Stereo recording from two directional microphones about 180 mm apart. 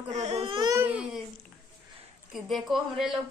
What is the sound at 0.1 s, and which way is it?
Baby cry, 40° right (ahead or behind).